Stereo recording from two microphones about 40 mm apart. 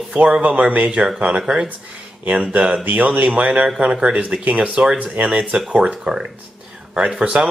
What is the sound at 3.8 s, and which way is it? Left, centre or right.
Speech, right.